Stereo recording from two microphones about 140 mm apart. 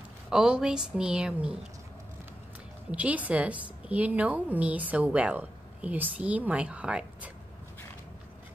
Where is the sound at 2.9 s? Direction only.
10° right (ahead or behind).